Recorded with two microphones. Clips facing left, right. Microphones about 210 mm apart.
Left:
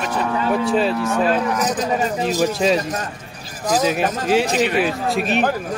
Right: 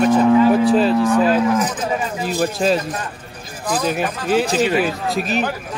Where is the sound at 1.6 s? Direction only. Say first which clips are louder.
Left 2 dB; 40° left (ahead or behind).